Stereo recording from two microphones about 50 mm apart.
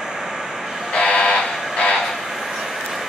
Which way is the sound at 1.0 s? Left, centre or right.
Left.